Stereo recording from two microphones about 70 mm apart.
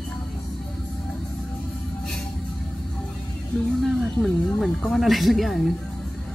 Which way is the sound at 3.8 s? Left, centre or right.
Centre.